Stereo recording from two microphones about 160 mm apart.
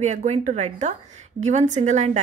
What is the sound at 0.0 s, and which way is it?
A woman's voice, 45° right (ahead or behind).